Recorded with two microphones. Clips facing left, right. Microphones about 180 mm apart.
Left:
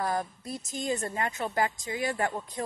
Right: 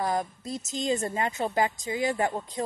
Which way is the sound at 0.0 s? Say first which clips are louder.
Right 2 dB; 20° right (ahead or behind).